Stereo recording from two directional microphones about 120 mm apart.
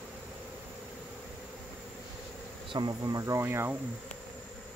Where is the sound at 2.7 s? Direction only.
35° right (ahead or behind).